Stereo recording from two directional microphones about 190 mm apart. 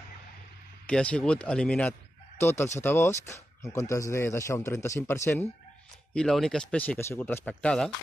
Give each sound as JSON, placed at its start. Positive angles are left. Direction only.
{"t": 0.8, "sound": "a man's voice", "side_deg": 5}
{"t": 6.1, "sound": "a man's voice", "side_deg": 0}